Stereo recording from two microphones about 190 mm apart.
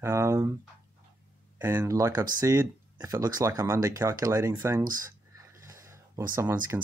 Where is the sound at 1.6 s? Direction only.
10° right (ahead or behind).